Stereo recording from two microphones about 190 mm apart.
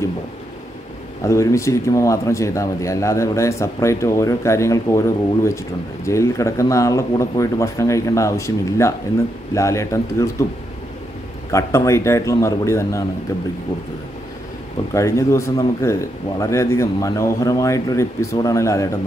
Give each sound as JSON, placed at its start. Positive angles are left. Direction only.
{"t": 1.2, "sound": "speech", "side_deg": 15}
{"t": 11.5, "sound": "speech", "side_deg": 15}
{"t": 15.0, "sound": "speech", "side_deg": 15}